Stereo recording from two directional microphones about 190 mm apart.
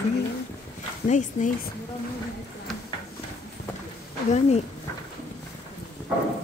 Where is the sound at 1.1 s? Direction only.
40° left (ahead or behind).